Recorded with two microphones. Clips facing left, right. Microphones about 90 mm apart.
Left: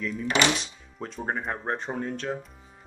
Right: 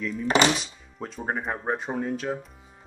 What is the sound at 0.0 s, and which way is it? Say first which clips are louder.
Speech: right 3 dB; centre (ahead or behind).